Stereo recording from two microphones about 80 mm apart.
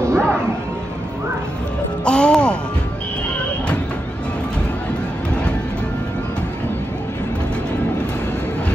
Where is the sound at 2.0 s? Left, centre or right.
Centre.